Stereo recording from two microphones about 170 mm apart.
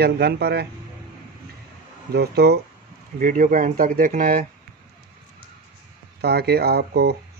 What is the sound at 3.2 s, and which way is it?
Speech, 50° right (ahead or behind).